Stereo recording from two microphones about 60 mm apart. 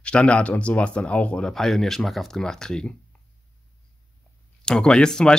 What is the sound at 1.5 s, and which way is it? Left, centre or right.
Speech, centre.